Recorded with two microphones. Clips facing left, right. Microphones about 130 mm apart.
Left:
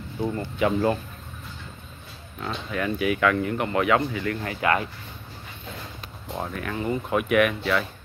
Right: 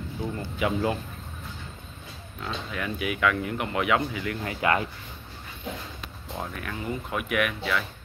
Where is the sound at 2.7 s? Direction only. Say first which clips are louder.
Left 7 dB; 5° right (ahead or behind).